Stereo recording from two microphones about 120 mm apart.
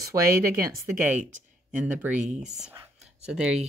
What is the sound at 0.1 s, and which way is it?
Speech, 30° right (ahead or behind).